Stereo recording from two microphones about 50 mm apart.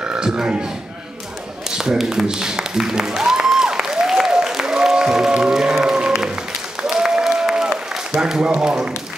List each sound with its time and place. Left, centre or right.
0.0 s a man's voice: centre
1.8 s music: centre
5.5 s applause: centre
8.5 s speech: centre